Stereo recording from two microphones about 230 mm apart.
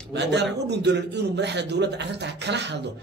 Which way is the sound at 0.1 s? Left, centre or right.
Right.